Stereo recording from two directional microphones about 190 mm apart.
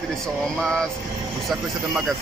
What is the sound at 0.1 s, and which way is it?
Speech, 5° left (ahead or behind).